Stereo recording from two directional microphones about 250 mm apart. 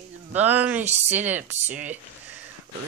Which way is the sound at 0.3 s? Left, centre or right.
Centre.